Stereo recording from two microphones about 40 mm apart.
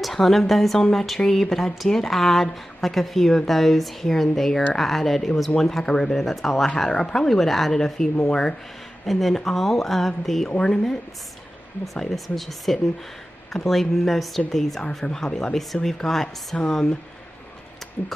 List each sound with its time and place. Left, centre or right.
0.0 s speech: centre
6.1 s speech: centre
6.9 s speech: centre
9.0 s speech: centre
10.6 s speech: centre
11.8 s speech: centre; by 15.5 s left
15.5 s speech: centre